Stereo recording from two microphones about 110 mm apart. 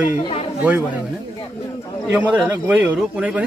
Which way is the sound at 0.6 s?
15° right (ahead or behind).